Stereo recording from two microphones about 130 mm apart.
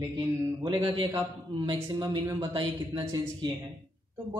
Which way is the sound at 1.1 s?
30° right (ahead or behind).